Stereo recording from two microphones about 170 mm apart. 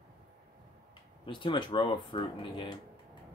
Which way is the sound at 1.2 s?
30° left (ahead or behind).